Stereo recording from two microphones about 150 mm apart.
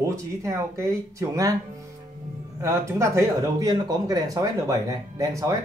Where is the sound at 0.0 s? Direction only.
20° right (ahead or behind).